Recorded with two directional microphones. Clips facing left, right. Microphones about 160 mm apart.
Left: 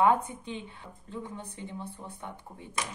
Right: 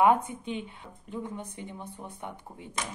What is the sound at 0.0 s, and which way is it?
Speech, 15° right (ahead or behind).